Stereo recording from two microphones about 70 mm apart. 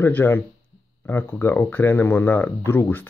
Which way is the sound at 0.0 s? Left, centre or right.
Left.